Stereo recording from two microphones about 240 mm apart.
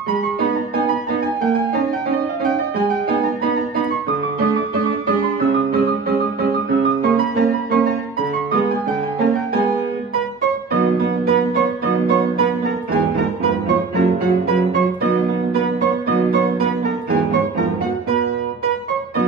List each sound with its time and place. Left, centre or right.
7.0 s music: right